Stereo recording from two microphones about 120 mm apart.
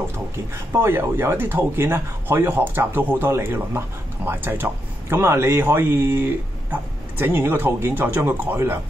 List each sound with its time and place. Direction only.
0.7 s speech: 20° right (ahead or behind)